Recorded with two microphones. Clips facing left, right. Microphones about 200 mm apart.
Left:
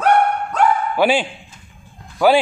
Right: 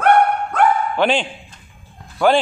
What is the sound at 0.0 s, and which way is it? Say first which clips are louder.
Dog: right 1 dB; 55° right (ahead or behind).